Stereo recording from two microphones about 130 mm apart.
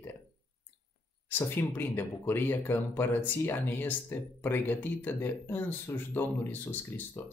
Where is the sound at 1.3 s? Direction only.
15° left (ahead or behind).